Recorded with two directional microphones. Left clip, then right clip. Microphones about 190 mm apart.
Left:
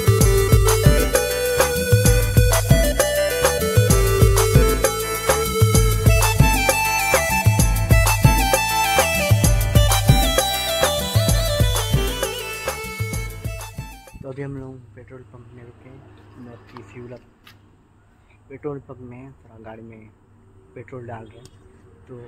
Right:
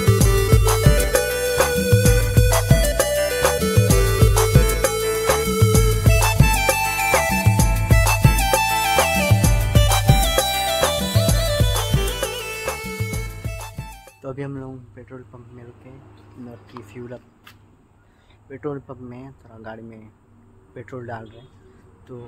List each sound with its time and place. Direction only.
0.0 s music: centre (ahead or behind)
14.3 s a sound: 10° right (ahead or behind)
18.5 s a man's voice: 15° right (ahead or behind)